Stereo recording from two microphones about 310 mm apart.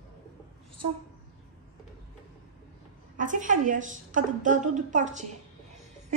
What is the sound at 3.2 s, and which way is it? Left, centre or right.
A woman's voice, right.